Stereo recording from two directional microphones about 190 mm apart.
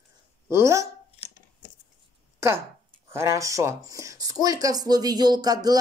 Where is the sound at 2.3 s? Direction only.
15° right (ahead or behind).